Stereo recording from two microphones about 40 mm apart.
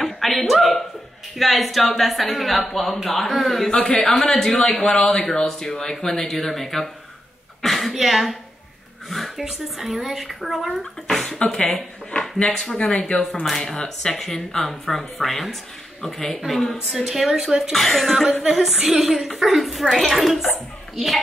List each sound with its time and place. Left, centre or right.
0.0 s a sound: centre
1.3 s speech: centre
9.4 s speech: centre
10.7 s speech: centre
16.9 s speech: centre
17.7 s speech: centre